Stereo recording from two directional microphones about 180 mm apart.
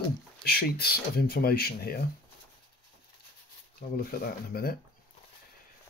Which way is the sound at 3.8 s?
55° left (ahead or behind).